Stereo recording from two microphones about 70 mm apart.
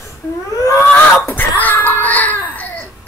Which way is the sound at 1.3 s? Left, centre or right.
Left.